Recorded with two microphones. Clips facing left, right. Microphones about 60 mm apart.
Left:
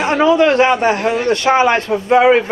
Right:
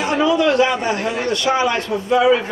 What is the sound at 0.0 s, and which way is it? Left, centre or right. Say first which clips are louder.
A man's voice: left 4 dB; left.